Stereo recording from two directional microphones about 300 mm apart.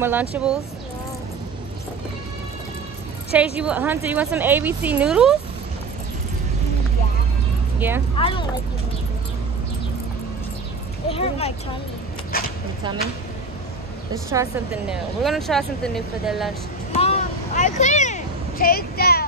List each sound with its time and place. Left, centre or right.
0.0 s speech: centre
3.5 s speech: centre
8.2 s speech: centre
11.1 s speech: centre
12.3 s a sound: left
14.3 s speech: centre
16.9 s a sound: left